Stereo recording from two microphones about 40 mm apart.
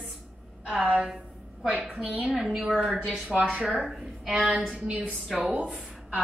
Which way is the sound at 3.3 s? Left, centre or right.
Right.